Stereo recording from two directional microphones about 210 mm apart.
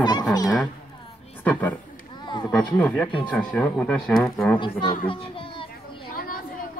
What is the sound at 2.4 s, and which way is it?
Speech, 5° left (ahead or behind).